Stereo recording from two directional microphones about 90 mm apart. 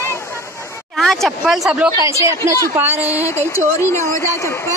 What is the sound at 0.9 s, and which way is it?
Speech, 5° left (ahead or behind).